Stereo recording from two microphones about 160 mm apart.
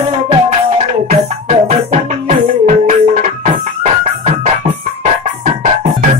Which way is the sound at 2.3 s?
50° right (ahead or behind).